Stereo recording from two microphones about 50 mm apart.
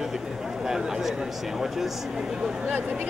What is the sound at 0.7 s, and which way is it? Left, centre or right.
A man's voice, centre.